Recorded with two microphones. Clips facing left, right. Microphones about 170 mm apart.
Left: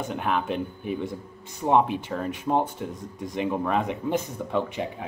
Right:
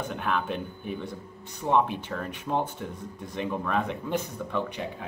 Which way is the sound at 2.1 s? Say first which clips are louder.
Left 6 dB; 20° left (ahead or behind).